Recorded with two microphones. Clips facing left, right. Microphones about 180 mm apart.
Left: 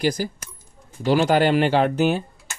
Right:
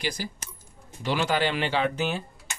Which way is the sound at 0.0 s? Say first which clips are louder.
Left 9 dB; 45° left (ahead or behind).